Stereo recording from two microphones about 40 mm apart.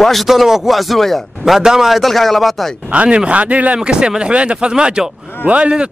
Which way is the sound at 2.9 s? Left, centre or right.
Right.